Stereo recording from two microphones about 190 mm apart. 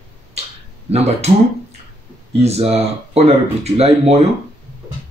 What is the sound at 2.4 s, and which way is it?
Speech, 35° right (ahead or behind).